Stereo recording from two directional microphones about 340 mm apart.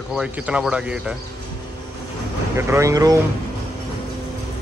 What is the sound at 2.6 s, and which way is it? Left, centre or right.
Speech, centre.